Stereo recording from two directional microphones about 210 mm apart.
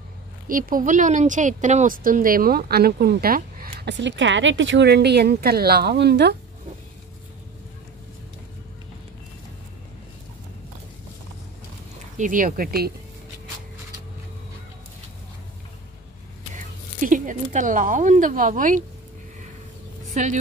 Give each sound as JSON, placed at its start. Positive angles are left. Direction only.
{"t": 0.5, "sound": "speech", "side_deg": -40}
{"t": 12.2, "sound": "speech", "side_deg": -40}
{"t": 16.5, "sound": "speech", "side_deg": -40}
{"t": 20.1, "sound": "a sound", "side_deg": -35}